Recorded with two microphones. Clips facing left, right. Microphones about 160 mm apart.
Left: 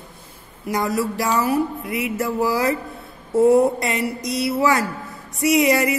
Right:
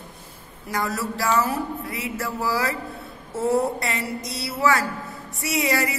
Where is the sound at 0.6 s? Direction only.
15° left (ahead or behind).